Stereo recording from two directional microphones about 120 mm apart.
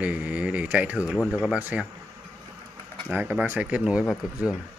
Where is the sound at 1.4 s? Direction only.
10° right (ahead or behind).